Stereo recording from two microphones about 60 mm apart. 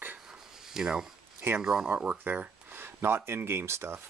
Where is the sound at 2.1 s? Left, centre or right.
Right.